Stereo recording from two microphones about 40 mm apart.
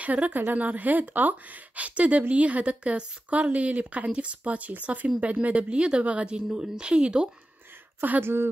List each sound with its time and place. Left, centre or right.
0.0 s a woman's voice: right
1.8 s a woman's voice: right
8.2 s a woman's voice: right